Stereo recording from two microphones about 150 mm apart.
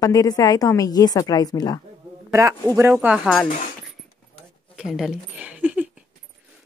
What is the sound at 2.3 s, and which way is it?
Speech, 20° right (ahead or behind).